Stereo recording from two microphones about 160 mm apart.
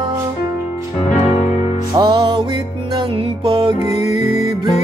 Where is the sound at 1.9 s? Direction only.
30° right (ahead or behind).